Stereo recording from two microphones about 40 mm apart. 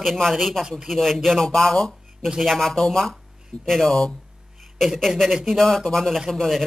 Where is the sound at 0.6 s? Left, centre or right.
Centre.